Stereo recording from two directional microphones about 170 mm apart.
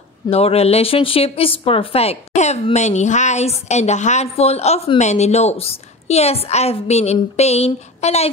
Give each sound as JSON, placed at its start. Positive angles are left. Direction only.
{"t": 0.3, "sound": "a woman's voice", "side_deg": 35}